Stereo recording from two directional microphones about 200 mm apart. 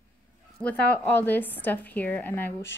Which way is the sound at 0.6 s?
5° left (ahead or behind).